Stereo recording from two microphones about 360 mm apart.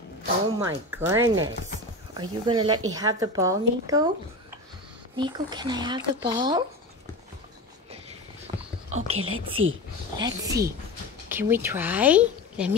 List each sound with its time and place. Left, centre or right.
0.6 s speech: centre
5.1 s speech: centre
8.5 s a sound: centre
8.9 s speech: centre
9.3 s speech: right
10.1 s speech: centre